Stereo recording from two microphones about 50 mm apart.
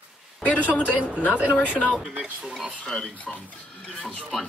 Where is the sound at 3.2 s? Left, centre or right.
Left.